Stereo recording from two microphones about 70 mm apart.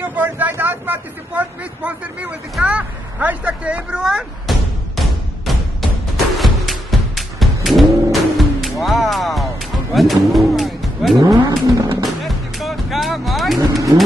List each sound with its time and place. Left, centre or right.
0.1 s vehicle: right
2.6 s speech: centre
4.5 s a sound: centre
6.3 s music: centre
9.9 s speech: centre
11.2 s vehicle: right
12.0 s music: centre
13.6 s vehicle: right